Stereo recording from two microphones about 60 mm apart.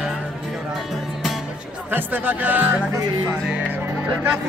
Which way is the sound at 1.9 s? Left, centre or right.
Right.